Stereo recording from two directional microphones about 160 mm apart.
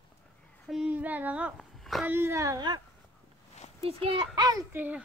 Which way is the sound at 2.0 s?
15° right (ahead or behind).